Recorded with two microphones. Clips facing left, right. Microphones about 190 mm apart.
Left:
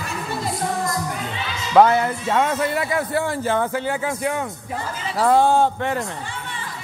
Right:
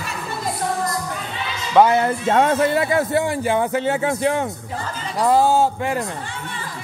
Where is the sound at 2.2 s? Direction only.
35° right (ahead or behind).